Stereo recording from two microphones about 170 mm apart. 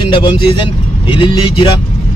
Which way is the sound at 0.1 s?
30° left (ahead or behind).